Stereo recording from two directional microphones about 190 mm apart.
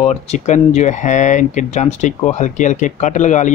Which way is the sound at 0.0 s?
35° left (ahead or behind).